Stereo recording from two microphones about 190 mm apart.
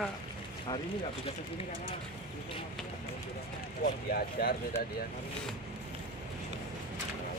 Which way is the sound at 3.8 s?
55° left (ahead or behind).